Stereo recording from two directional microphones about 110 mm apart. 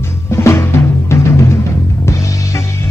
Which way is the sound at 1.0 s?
25° left (ahead or behind).